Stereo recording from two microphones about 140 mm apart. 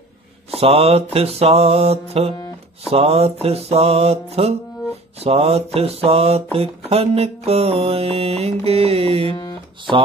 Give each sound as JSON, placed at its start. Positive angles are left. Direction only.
{"t": 0.6, "sound": "mantra", "side_deg": -45}
{"t": 9.3, "sound": "guitar", "side_deg": 35}